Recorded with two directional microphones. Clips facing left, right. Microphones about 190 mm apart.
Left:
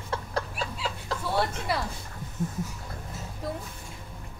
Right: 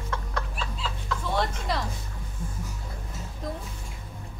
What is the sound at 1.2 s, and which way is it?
Speech, 10° left (ahead or behind).